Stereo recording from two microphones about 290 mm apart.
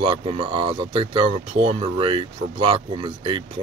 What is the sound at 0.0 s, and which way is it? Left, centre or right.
Speech, centre.